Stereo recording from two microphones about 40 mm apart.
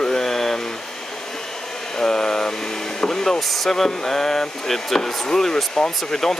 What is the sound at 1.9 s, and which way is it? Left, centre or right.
Speech, centre.